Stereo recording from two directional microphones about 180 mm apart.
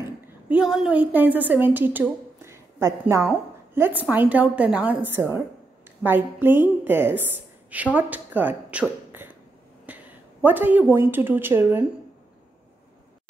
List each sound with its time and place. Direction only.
0.5 s a woman's voice: 5° right (ahead or behind)
9.1 s a sound: 10° right (ahead or behind)
9.8 s a woman's voice: 10° right (ahead or behind)